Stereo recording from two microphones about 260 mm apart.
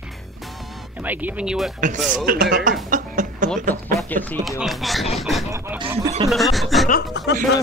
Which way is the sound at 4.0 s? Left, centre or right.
Centre.